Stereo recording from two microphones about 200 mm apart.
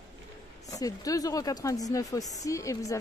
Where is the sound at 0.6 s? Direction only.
15° left (ahead or behind).